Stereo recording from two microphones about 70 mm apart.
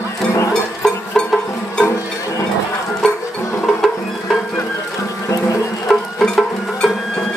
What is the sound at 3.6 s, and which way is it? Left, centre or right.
Music, centre.